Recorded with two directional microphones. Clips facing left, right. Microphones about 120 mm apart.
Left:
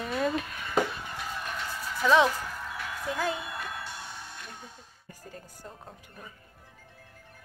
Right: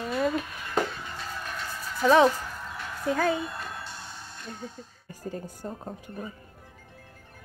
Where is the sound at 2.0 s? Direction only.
40° right (ahead or behind).